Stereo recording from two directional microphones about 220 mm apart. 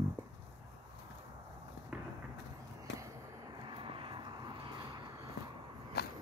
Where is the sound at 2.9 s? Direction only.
55° left (ahead or behind).